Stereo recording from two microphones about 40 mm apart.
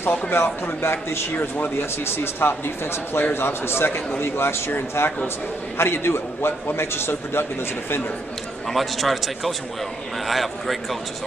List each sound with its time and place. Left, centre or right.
0.1 s a man's voice: left
1.3 s speech: left
1.8 s a man's voice: left
3.3 s a man's voice: left
5.8 s a man's voice: left
8.6 s a man's voice: centre